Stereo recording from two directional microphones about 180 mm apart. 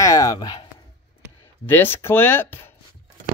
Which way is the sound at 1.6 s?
10° left (ahead or behind).